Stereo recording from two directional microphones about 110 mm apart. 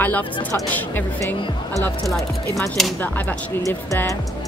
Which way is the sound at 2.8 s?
Centre (ahead or behind).